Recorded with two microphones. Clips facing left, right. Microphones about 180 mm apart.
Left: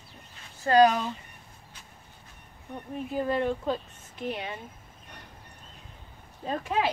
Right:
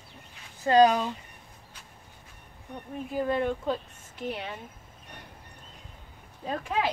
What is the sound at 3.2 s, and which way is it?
Speech, centre (ahead or behind).